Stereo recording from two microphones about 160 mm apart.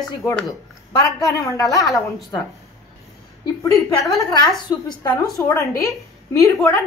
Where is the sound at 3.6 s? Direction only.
20° left (ahead or behind).